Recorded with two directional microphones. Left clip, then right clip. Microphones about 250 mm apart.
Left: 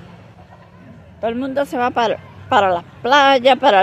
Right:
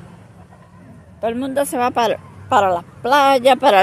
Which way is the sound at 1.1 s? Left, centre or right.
Centre.